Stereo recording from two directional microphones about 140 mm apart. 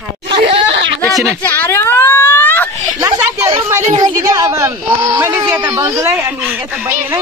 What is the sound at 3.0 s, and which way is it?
Speech, 25° right (ahead or behind).